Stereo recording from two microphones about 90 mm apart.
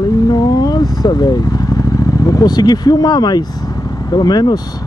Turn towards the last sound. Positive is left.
turn(degrees=50)  # may be behind; listen again after turning